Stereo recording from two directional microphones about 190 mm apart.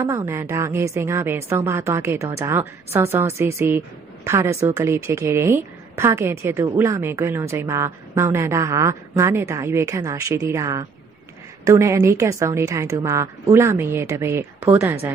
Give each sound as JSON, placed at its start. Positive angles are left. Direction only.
{"t": 0.0, "sound": "a woman's voice", "side_deg": -15}